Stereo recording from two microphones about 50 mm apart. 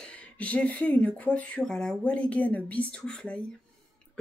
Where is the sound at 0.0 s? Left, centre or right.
Left.